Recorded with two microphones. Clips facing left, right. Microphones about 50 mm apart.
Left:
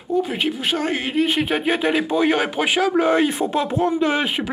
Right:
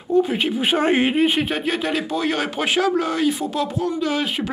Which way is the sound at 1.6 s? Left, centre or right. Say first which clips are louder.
Left 3 dB; centre.